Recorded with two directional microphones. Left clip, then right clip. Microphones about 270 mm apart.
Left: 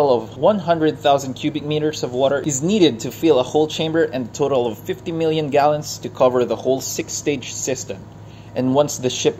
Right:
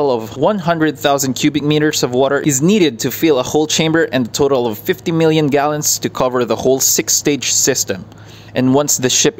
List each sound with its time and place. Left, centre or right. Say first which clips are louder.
0.0 s speech: right 1 dB; right